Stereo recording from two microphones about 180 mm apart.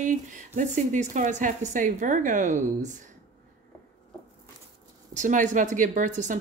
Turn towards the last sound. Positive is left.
turn(degrees=-45)  # may be behind; listen again after turning